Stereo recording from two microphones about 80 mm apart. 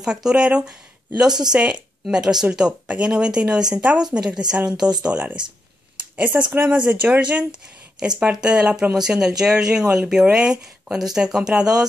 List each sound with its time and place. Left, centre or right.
0.0 s speech: centre